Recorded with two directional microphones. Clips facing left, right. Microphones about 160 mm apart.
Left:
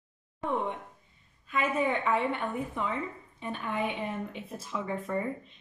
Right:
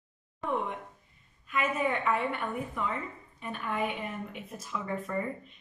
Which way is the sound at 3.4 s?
25° left (ahead or behind).